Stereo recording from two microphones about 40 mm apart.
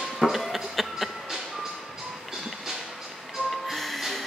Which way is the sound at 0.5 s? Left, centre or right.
Centre.